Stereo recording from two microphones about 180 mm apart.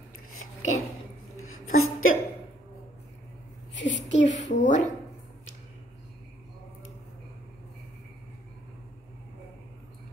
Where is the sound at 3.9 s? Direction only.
90° left.